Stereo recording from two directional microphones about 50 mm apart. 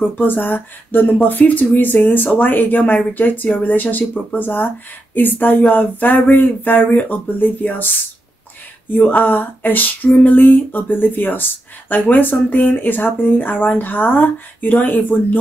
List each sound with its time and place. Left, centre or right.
0.2 s speech: left
9.2 s speech: left